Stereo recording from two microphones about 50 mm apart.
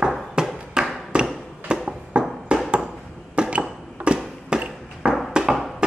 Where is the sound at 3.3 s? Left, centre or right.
Right.